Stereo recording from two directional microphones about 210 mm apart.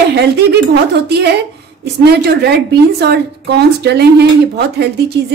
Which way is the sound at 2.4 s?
50° right (ahead or behind).